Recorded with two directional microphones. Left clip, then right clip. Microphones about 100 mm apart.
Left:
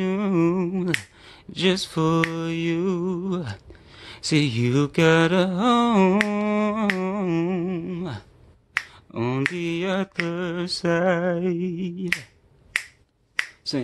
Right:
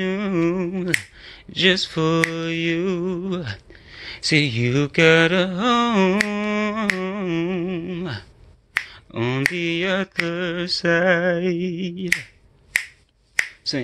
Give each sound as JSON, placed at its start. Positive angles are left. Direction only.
{"t": 0.0, "sound": "humming", "side_deg": 45}
{"t": 0.3, "sound": "speech", "side_deg": 60}
{"t": 3.3, "sound": "a sound", "side_deg": 45}
{"t": 4.5, "sound": "mantra", "side_deg": 55}
{"t": 7.5, "sound": "humming", "side_deg": 40}
{"t": 7.8, "sound": "a sound", "side_deg": 25}
{"t": 13.7, "sound": "humming", "side_deg": 35}